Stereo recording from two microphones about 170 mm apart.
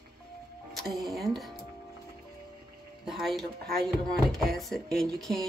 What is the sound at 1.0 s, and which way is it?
Speech, centre (ahead or behind).